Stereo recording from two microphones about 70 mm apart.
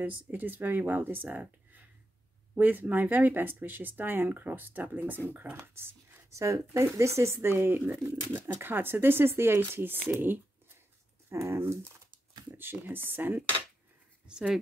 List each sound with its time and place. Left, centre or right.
0.0 s speech: right
2.5 s speech: right
6.3 s speech: right
14.2 s speech: centre